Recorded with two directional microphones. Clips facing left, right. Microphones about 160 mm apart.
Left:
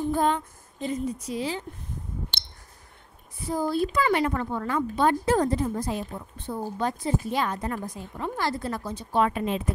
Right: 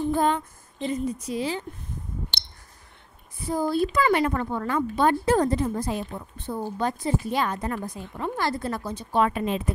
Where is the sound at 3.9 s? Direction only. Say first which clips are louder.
Right 2 dB; 55° right (ahead or behind).